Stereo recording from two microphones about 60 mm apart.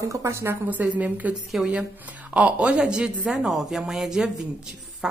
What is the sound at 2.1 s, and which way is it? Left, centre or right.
A woman's voice, right.